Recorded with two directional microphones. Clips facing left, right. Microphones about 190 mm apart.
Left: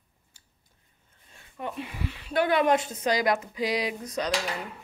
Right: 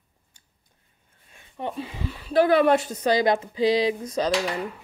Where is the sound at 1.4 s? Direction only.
30° right (ahead or behind).